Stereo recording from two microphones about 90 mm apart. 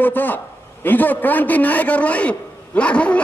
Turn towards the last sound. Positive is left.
turn(degrees=15)  # may be behind; listen again after turning